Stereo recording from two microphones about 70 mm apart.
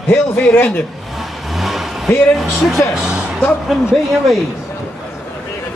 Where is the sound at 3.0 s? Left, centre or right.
Centre.